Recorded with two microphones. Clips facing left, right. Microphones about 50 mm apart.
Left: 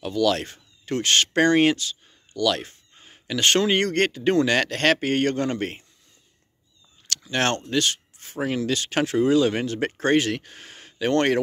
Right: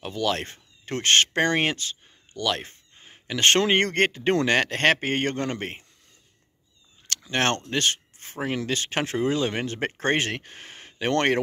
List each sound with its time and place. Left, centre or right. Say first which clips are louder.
0.0 s speech: left 4 dB; right
1.8 s a sound: left 1 dB; right; by 3.3 s centre
3.3 s speech: even; right
4.6 s speech: even; right
5.6 s speech: left 4 dB; centre
7.1 s a sound: left 1 dB; right
8.6 s speech: left 3 dB; right